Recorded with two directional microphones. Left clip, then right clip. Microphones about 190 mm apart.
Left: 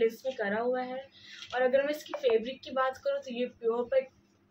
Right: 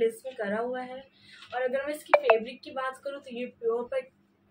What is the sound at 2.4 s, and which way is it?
A woman's voice, centre (ahead or behind).